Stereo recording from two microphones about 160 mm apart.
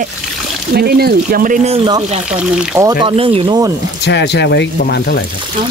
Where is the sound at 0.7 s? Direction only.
75° right (ahead or behind).